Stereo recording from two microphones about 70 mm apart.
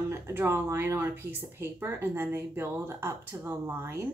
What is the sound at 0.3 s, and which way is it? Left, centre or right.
Speech, right.